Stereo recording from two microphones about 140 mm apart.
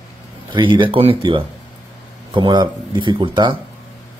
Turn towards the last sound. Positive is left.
turn(degrees=-35)  # may be behind; listen again after turning